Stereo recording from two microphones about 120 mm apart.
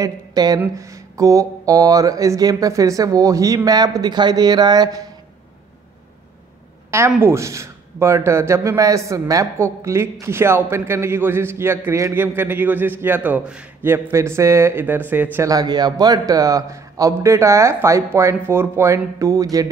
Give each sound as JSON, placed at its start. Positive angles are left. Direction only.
{"t": 0.0, "sound": "a man's voice", "side_deg": -35}
{"t": 7.2, "sound": "a man's voice", "side_deg": -20}
{"t": 15.4, "sound": "a man's voice", "side_deg": -35}